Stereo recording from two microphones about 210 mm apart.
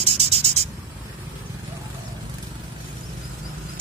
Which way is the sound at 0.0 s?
30° right (ahead or behind).